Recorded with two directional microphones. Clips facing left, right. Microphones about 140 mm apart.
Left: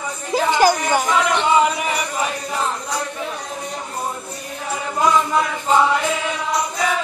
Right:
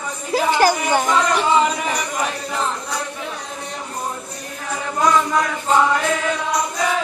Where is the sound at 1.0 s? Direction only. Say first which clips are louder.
Even; 5° left (ahead or behind).